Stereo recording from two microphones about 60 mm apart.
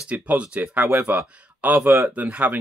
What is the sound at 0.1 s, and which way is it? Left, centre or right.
Speech, right.